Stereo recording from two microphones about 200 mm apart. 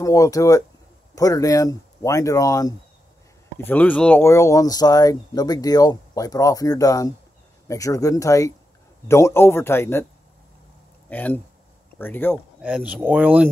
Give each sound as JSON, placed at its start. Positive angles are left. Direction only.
{"t": 0.0, "sound": "speech", "side_deg": 15}
{"t": 11.1, "sound": "speech", "side_deg": 10}
{"t": 12.6, "sound": "speech", "side_deg": -5}